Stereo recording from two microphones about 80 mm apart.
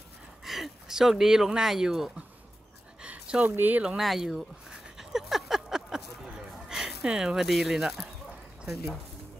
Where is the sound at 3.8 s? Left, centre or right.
Centre.